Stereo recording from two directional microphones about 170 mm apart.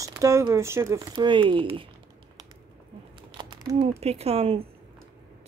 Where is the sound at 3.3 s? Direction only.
25° right (ahead or behind).